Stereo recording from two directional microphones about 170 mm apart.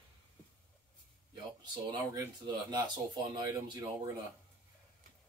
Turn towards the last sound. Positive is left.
turn(degrees=-25)  # may be behind; listen again after turning